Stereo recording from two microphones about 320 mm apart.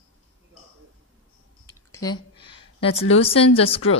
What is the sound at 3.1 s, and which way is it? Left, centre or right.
Speech, centre.